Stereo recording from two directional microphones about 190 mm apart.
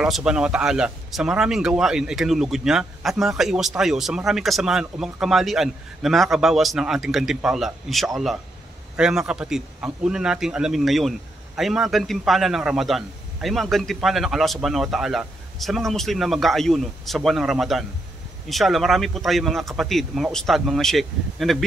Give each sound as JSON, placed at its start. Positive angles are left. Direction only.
{"t": 0.0, "sound": "a man's voice", "side_deg": -5}